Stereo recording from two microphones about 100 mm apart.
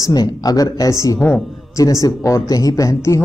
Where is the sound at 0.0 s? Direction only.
40° left (ahead or behind).